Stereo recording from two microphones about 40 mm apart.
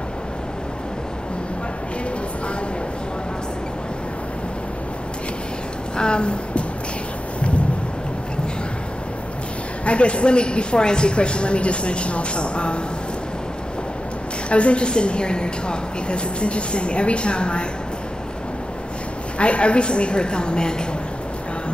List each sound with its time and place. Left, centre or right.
5.9 s a sound: left
7.3 s thunder: left
9.8 s a woman's voice: left
14.5 s a woman's voice: left
19.3 s a woman's voice: left